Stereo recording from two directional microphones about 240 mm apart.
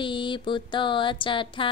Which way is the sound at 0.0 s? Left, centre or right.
Centre.